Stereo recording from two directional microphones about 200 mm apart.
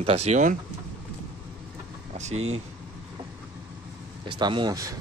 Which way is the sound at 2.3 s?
90° right.